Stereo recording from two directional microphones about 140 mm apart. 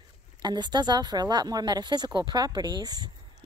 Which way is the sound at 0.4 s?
30° right (ahead or behind).